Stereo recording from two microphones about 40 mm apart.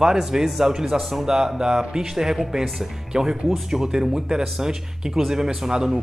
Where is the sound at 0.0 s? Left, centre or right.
Centre.